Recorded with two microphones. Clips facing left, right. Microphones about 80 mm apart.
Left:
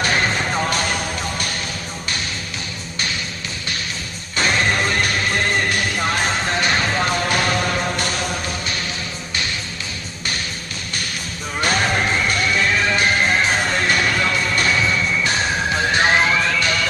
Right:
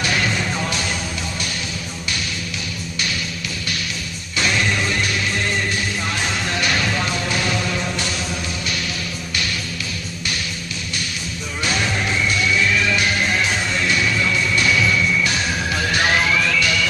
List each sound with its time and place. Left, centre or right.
0.0 s music: left
4.4 s music: left
11.6 s music: left